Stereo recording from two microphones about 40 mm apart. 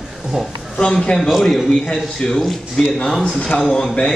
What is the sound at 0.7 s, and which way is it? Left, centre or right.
Speech, left.